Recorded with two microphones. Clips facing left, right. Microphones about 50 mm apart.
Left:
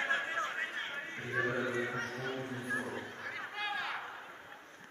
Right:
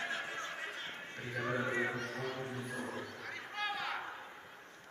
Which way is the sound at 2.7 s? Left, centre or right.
Left.